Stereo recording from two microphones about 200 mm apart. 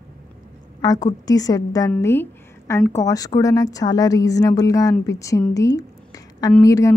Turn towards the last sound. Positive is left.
turn(degrees=15)  # may be behind; listen again after turning